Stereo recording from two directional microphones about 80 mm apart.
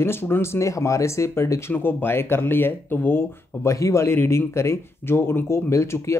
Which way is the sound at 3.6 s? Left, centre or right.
Left.